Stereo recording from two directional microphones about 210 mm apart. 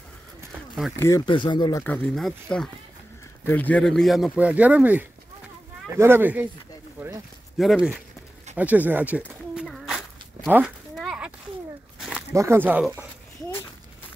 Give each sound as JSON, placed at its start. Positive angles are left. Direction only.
{"t": 0.9, "sound": "speech", "side_deg": 15}
{"t": 3.4, "sound": "speech", "side_deg": 10}
{"t": 9.6, "sound": "a sound", "side_deg": 0}
{"t": 12.4, "sound": "speech", "side_deg": -10}